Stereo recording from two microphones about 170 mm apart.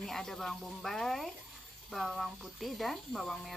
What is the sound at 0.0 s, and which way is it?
Speech, centre (ahead or behind).